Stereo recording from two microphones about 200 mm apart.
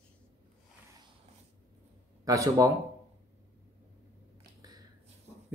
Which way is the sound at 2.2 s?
15° right (ahead or behind).